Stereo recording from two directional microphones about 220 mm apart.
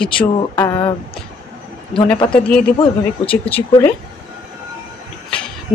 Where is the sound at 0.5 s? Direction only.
15° left (ahead or behind).